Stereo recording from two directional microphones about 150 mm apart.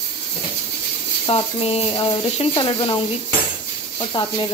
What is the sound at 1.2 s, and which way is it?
Speech, 40° left (ahead or behind).